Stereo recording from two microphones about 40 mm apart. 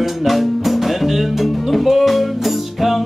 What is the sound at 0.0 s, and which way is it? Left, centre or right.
Music, centre.